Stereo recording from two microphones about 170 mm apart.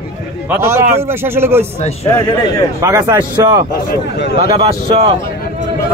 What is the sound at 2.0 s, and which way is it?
Speech, 15° left (ahead or behind).